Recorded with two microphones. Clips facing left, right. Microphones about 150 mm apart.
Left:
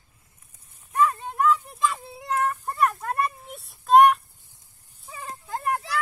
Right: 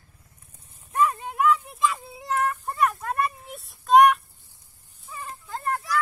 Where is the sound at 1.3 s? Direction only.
5° right (ahead or behind).